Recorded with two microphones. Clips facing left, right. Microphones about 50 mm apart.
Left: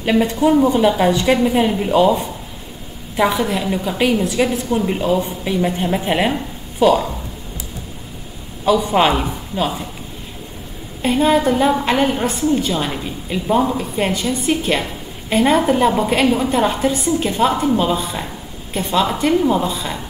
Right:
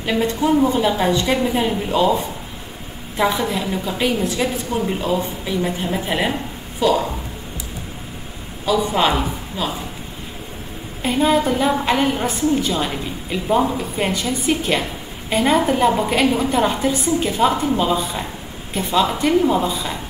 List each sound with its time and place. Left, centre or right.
0.0 s a woman's voice: centre
3.2 s a woman's voice: centre
5.1 s a woman's voice: centre
8.6 s a woman's voice: centre
11.0 s a woman's voice: centre